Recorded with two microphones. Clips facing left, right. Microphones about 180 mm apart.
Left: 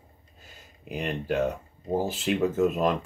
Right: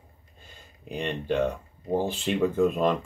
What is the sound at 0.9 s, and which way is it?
Speech, 5° left (ahead or behind).